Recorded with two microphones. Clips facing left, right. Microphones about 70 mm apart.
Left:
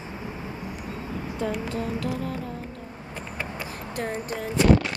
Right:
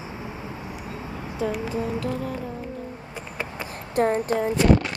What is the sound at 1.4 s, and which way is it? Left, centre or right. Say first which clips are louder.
Speech: right 3 dB; centre.